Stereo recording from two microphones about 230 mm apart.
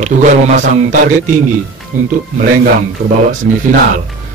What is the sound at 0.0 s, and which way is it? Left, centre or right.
A man's voice, right.